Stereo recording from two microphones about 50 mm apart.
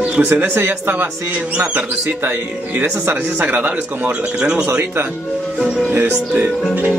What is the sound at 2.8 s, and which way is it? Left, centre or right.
Speech, right.